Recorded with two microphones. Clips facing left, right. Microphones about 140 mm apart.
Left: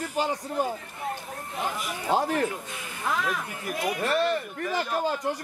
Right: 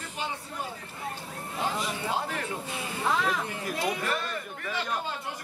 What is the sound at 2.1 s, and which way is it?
Speech, 35° left (ahead or behind).